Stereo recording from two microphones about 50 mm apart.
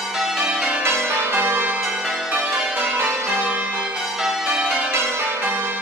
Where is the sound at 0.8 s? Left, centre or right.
Right.